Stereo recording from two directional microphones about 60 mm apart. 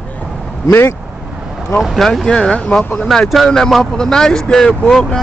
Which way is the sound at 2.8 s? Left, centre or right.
Left.